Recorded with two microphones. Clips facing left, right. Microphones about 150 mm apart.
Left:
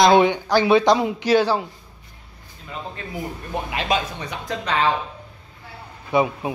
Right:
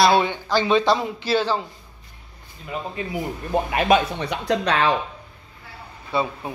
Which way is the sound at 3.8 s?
65° right (ahead or behind).